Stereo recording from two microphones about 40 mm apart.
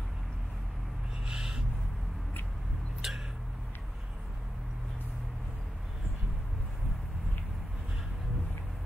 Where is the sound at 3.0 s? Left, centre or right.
Centre.